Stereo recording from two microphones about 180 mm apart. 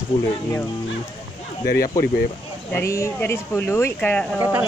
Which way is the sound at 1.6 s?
55° left (ahead or behind).